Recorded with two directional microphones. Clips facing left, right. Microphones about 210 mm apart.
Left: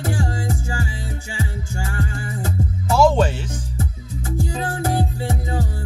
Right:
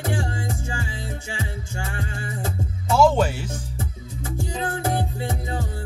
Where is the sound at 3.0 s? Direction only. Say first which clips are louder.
Left 2 dB; 10° right (ahead or behind).